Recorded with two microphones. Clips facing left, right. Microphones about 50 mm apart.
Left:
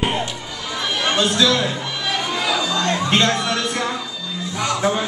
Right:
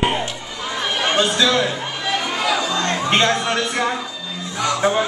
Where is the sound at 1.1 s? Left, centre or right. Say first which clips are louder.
Even; centre.